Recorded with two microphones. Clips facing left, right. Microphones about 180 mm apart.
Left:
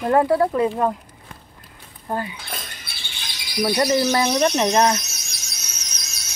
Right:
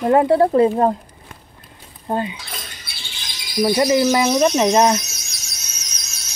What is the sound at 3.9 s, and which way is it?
Speech, 10° right (ahead or behind).